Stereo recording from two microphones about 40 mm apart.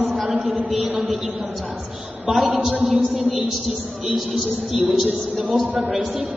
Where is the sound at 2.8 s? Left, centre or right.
Centre.